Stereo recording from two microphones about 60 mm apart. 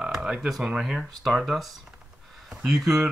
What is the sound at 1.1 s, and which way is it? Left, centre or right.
Speech, centre.